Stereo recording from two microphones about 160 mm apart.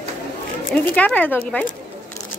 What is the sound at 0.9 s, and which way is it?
Speech, 10° left (ahead or behind).